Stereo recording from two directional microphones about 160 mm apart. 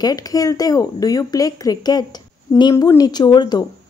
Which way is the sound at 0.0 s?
25° left (ahead or behind).